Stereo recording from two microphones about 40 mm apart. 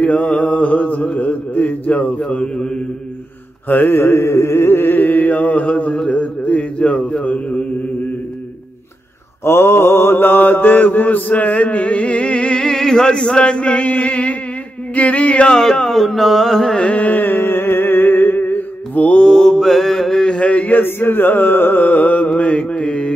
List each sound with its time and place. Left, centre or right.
0.1 s mantra: left
2.3 s mantra: left
3.6 s mantra: left
3.9 s music: left
6.0 s mantra: left
9.4 s mantra: left
15.5 s carnatic music: centre
16.9 s mantra: left
17.2 s music: left
19.1 s mantra: centre
20.2 s mantra: left
20.7 s music: left
22.4 s mantra: left